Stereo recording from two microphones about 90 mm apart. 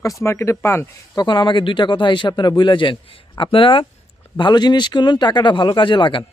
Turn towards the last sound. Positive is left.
turn(degrees=65)  # may be behind; listen again after turning